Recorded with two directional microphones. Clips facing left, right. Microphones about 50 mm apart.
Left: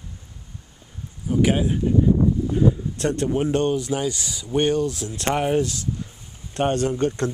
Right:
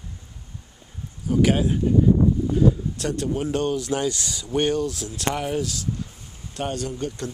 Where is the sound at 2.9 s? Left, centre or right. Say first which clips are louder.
Left 3 dB; left.